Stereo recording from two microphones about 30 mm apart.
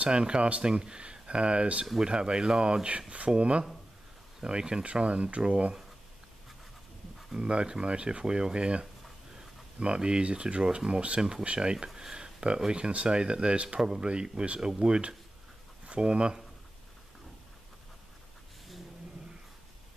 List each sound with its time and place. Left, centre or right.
0.0 s speech: right
2.0 s speech: right
4.9 s speech: right
7.3 s speech: right
11.9 s a sound: right
12.9 s speech: right
13.7 s speech: right
15.9 s speech: right